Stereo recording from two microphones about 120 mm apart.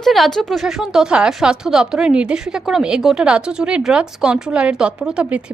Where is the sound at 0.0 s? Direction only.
Centre (ahead or behind).